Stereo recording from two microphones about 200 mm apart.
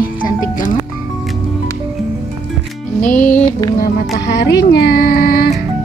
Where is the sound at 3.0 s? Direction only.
40° left (ahead or behind).